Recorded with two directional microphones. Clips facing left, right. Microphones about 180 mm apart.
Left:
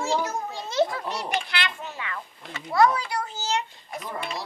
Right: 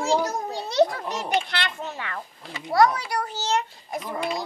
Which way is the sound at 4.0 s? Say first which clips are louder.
Right 4 dB; 15° right (ahead or behind).